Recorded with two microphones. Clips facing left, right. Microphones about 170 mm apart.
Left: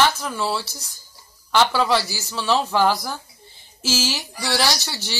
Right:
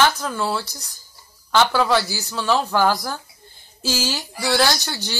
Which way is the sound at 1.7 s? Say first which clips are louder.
Right 1 dB; centre (ahead or behind).